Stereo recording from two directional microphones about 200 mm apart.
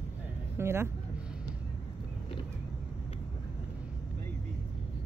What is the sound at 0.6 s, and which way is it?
Speech, 15° right (ahead or behind).